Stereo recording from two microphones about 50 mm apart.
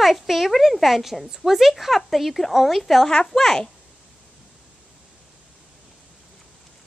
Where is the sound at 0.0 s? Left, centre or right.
Centre.